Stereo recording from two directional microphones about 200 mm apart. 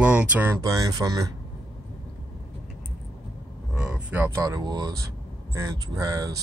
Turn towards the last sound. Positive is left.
turn(degrees=-20)  # may be behind; listen again after turning